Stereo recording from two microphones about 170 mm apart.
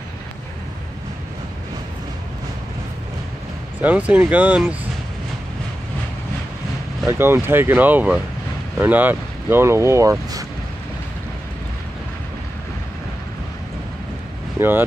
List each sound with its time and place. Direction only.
3.8 s speech: 10° right (ahead or behind)
7.1 s speech: 15° right (ahead or behind)
14.6 s speech: 10° right (ahead or behind)